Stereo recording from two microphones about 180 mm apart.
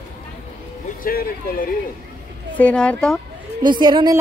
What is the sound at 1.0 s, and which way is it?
Speech, 55° left (ahead or behind).